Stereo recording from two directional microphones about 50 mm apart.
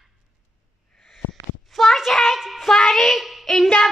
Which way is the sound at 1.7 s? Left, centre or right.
Centre.